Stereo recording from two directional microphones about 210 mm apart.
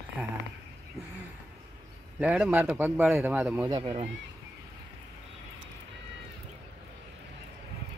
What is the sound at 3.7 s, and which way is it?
Speech, 20° right (ahead or behind).